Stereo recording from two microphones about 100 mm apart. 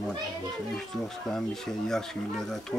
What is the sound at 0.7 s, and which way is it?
Speech, 5° left (ahead or behind).